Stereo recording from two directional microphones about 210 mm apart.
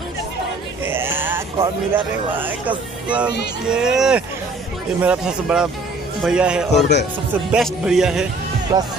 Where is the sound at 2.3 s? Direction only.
10° right (ahead or behind).